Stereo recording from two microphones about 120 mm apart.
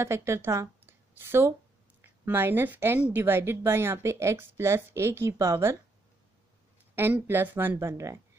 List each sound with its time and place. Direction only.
0.0 s a woman's voice: 25° right (ahead or behind)
7.0 s speech: 15° right (ahead or behind)